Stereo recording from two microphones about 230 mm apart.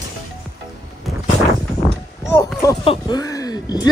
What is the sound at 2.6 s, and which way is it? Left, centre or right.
Speech, centre.